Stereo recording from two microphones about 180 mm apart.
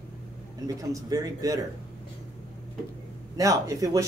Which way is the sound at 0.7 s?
20° right (ahead or behind).